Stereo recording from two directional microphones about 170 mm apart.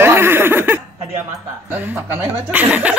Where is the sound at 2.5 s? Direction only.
10° right (ahead or behind).